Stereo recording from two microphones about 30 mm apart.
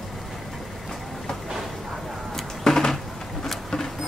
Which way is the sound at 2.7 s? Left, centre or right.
Centre.